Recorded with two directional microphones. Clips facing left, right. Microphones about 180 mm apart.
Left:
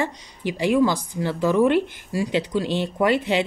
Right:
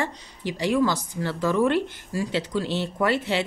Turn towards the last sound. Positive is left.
turn(degrees=15)  # may be behind; listen again after turning